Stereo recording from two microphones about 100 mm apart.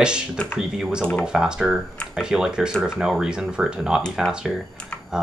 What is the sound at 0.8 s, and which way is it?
Speech, 10° right (ahead or behind).